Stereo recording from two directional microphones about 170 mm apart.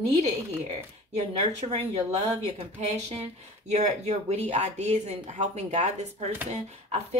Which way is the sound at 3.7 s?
40° right (ahead or behind).